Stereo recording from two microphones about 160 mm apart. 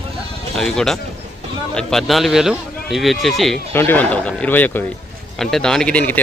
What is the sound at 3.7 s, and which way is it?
Speech, 10° left (ahead or behind).